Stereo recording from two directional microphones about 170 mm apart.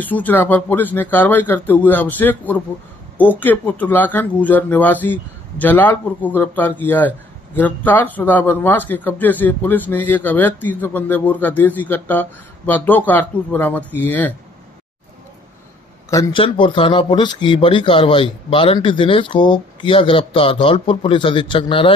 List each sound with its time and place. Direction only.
0.0 s a man's voice: 10° left (ahead or behind)
16.1 s speech: 20° left (ahead or behind)
16.4 s speech: 30° left (ahead or behind)